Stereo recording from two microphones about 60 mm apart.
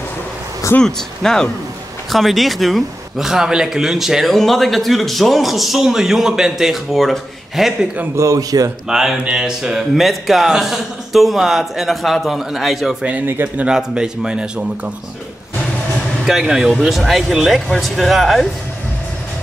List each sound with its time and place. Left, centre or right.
0.8 s speech: centre
8.2 s speech: right
8.8 s speech: centre
16.3 s speech: centre